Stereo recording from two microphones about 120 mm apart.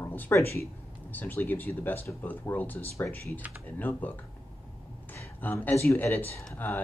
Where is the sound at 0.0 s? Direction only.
15° left (ahead or behind).